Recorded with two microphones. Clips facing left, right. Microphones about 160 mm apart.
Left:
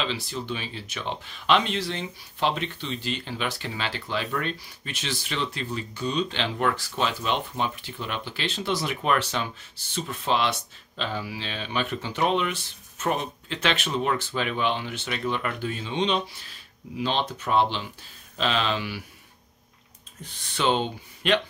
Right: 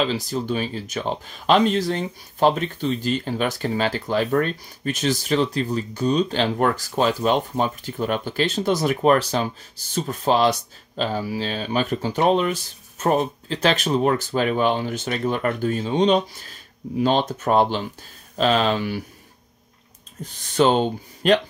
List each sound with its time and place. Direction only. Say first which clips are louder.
0.0 s speech: right 7 dB; 40° right (ahead or behind)
20.2 s speech: right 7 dB; 40° right (ahead or behind)